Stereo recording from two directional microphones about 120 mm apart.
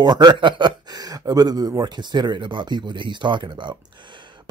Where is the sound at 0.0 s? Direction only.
35° right (ahead or behind).